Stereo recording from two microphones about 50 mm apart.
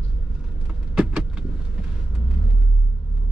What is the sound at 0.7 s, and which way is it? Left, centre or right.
Power windows, centre.